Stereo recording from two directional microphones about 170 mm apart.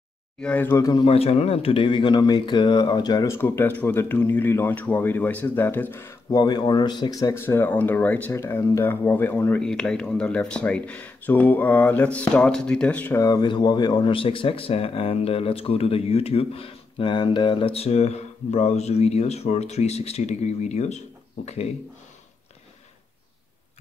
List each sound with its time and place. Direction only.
0.4 s speech: 10° left (ahead or behind); by 21.7 s 40° left (ahead or behind)